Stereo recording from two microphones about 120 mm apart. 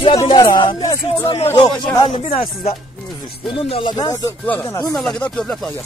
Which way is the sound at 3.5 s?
45° left (ahead or behind).